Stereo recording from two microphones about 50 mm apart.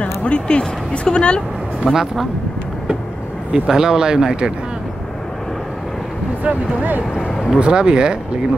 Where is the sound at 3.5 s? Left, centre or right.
Centre.